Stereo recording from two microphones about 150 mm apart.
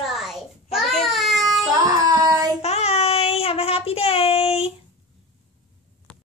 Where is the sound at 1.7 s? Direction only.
25° right (ahead or behind).